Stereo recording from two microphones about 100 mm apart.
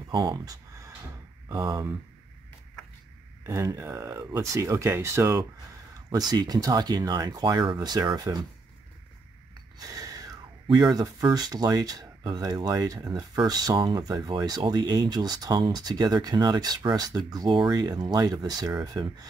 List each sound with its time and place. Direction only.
0.1 s a sound: 45° right (ahead or behind)
3.4 s speech: 30° right (ahead or behind)
6.1 s speech: 40° right (ahead or behind)
9.8 s speech: 35° right (ahead or behind)